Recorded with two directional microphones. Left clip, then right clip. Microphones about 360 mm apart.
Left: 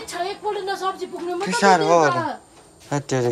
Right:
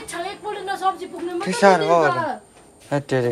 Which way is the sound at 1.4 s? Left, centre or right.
Centre.